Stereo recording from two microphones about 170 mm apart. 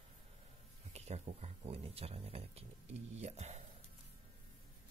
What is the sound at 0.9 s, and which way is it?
Speech, 40° right (ahead or behind).